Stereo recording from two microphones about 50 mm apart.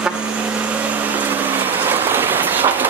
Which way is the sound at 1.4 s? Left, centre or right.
Right.